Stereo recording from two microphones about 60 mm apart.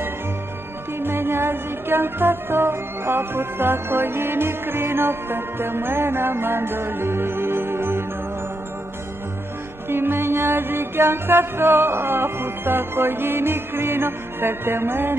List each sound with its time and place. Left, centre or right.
1.0 s music: right
9.8 s music: right